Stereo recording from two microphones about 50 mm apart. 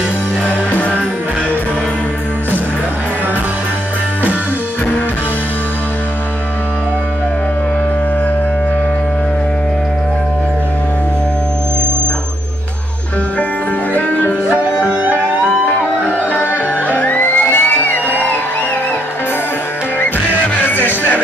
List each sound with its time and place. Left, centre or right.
13.9 s music: left
15.4 s music: left
20.6 s music: left